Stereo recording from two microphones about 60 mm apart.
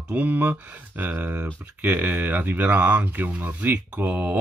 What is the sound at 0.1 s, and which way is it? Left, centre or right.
Speech, right.